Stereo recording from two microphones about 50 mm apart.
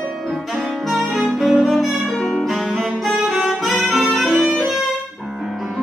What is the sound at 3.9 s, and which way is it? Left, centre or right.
Music, centre.